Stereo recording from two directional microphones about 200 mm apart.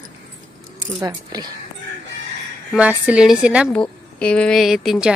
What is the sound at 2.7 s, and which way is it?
A woman's voice, 5° right (ahead or behind).